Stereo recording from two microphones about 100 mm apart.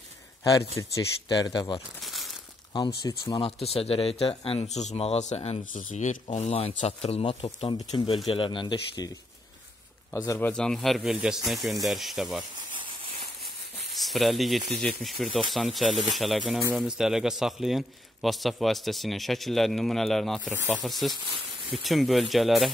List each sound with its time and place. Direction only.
0.4 s speech: 35° left (ahead or behind)
2.0 s crumpling: centre (ahead or behind)
2.7 s speech: 50° left (ahead or behind)
3.6 s speech: 90° left; by 8.2 s 75° left (ahead or behind)
8.3 s speech: 55° left (ahead or behind)
10.1 s speech: 35° left (ahead or behind)
10.4 s a man's voice: 10° left (ahead or behind)
11.0 s a man's voice: 5° right (ahead or behind)
12.7 s a sound: 55° right (ahead or behind)
13.9 s a man's voice: centre (ahead or behind)
20.5 s speech: 20° right (ahead or behind)
20.8 s a man's voice: centre (ahead or behind)
21.1 s speech: 60° right (ahead or behind)
21.8 s a man's voice: centre (ahead or behind)